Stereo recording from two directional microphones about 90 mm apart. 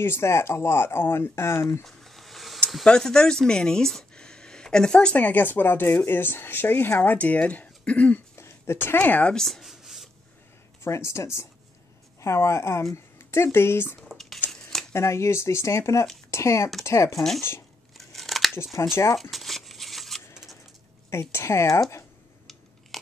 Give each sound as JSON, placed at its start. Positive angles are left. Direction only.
{"t": 0.0, "sound": "speech", "side_deg": 30}
{"t": 1.9, "sound": "a sound", "side_deg": 0}
{"t": 2.7, "sound": "speech", "side_deg": 5}
{"t": 8.4, "sound": "speech", "side_deg": 30}
{"t": 9.3, "sound": "writing", "side_deg": 5}
{"t": 10.8, "sound": "speech", "side_deg": 30}
{"t": 14.0, "sound": "squish", "side_deg": 0}
{"t": 14.5, "sound": "shuffling cards", "side_deg": 5}
{"t": 14.9, "sound": "speech", "side_deg": 30}
{"t": 17.9, "sound": "scissors", "side_deg": 0}
{"t": 19.3, "sound": "a sound", "side_deg": 0}
{"t": 21.1, "sound": "speech", "side_deg": 30}